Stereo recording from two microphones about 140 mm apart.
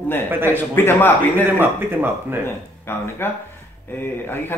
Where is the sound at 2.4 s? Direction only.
15° left (ahead or behind).